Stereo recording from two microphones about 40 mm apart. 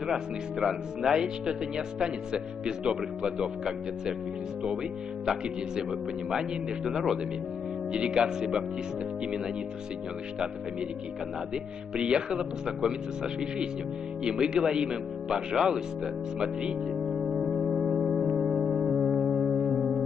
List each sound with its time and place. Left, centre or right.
0.0 s speech: centre
5.2 s speech: centre
11.5 s speech: right
17.1 s music: centre